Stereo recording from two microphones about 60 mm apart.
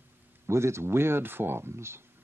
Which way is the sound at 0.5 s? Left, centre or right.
Right.